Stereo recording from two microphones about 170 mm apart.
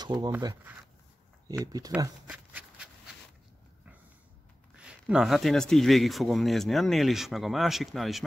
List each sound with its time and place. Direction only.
0.0 s speech: 25° right (ahead or behind)
2.2 s a sound: 5° right (ahead or behind)
4.7 s speech: 5° right (ahead or behind)